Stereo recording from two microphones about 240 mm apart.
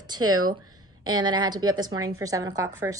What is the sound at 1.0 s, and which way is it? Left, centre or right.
A woman's voice, centre.